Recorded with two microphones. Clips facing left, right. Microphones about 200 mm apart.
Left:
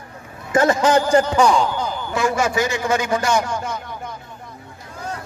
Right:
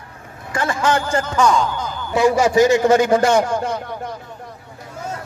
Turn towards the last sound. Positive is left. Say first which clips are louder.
# right 5 dB
turn(degrees=-50)  # may be behind; listen again after turning